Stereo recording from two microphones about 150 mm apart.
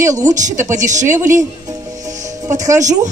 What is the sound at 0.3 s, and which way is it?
Speech, 55° right (ahead or behind).